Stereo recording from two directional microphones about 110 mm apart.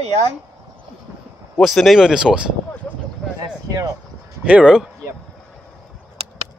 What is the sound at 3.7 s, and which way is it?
Speech, 30° right (ahead or behind).